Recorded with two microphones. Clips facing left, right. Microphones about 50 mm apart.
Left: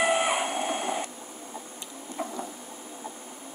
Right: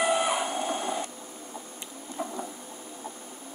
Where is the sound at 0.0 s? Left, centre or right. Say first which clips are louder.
Left 1 dB; left.